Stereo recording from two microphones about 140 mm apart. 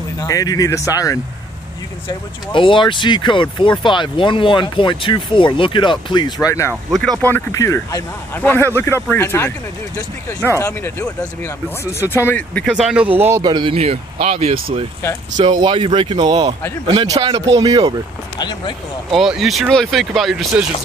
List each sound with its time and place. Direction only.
0.2 s speech: 25° left (ahead or behind)
2.5 s speech: 35° left (ahead or behind)
6.4 s speech: 20° left (ahead or behind)
6.9 s speech: 5° left (ahead or behind)
10.5 s speech: 20° left (ahead or behind)
12.6 s speech: 5° right (ahead or behind)
13.4 s speech: 35° right (ahead or behind)
18.4 s speech: 30° left (ahead or behind)
19.1 s speech: centre (ahead or behind)